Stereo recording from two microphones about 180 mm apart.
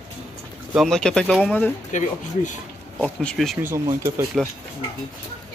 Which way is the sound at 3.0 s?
5° left (ahead or behind).